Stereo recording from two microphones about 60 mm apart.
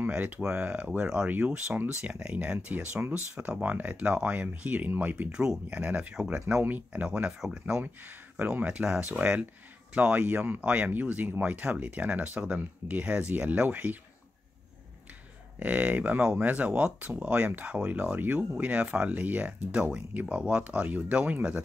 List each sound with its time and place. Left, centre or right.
0.0 s speech: right
5.3 s speech: centre
6.1 s speech: centre
6.9 s speech: right
7.8 s speech: right
15.6 s speech: right